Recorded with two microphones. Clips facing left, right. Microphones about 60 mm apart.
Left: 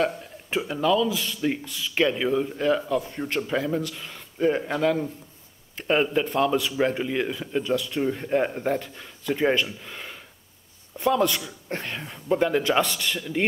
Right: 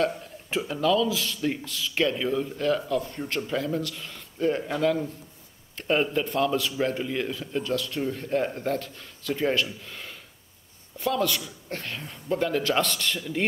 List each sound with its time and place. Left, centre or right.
0.0 s a man's voice: centre